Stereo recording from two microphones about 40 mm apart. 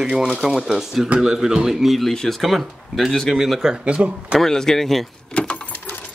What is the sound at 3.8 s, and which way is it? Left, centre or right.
Speech, right.